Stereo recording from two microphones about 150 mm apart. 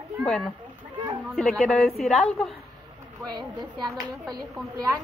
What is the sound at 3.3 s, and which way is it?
A woman's voice, 30° right (ahead or behind).